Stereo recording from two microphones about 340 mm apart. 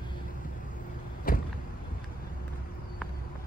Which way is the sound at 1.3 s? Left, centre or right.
Left.